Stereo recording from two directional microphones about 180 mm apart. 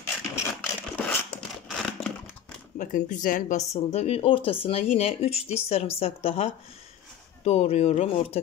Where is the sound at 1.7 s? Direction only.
Centre (ahead or behind).